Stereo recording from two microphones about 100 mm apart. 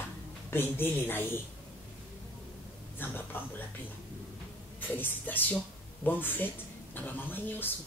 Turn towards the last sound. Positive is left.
turn(degrees=20)  # may be behind; listen again after turning